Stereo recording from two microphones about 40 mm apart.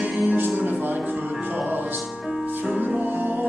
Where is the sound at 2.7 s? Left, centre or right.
Right.